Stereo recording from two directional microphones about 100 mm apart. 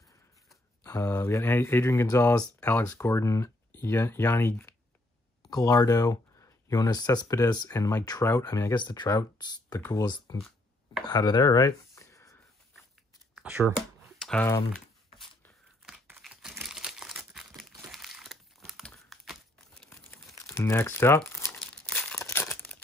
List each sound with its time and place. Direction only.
0.8 s speech: 25° left (ahead or behind)
2.8 s speech: 30° left (ahead or behind)
5.5 s speech: 40° left (ahead or behind)
8.7 s speech: 50° left (ahead or behind)
11.1 s chopping: 45° left (ahead or behind)
13.3 s finger snapping: 15° right (ahead or behind)
16.2 s computer keyboard: centre (ahead or behind)
16.6 s crumpling: 5° right (ahead or behind)
20.3 s speech: 30° left (ahead or behind)
21.8 s crumpling: 15° left (ahead or behind)
22.2 s crumpling: 25° left (ahead or behind)